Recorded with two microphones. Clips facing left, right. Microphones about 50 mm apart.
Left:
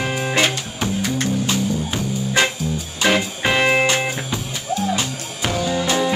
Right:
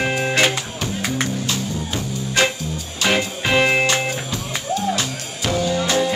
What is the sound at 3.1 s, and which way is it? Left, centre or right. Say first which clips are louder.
Music: left 1 dB; centre.